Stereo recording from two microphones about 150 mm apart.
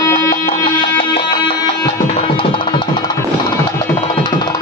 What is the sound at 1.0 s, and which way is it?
Music, 35° left (ahead or behind).